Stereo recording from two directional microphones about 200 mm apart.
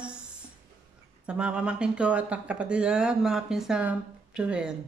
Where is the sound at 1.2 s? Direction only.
5° right (ahead or behind).